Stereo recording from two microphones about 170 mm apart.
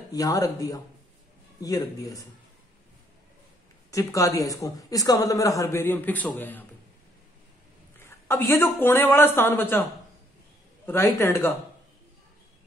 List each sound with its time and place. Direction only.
0.1 s a man's voice: 20° left (ahead or behind)
3.9 s a man's voice: 20° left (ahead or behind)
8.0 s speech: 15° left (ahead or behind)
10.9 s speech: 15° left (ahead or behind)